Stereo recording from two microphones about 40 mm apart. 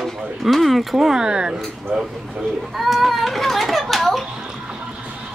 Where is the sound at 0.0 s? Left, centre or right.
Centre.